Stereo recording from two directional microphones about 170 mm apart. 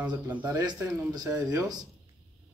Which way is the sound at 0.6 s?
25° right (ahead or behind).